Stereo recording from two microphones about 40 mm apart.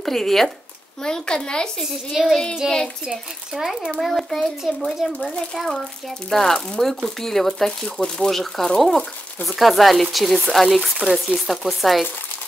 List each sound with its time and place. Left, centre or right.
0.0 s speech: centre
1.0 s a child's voice: centre
1.8 s a child's voice: centre
4.0 s speech: centre
4.8 s speech: centre
6.3 s speech: centre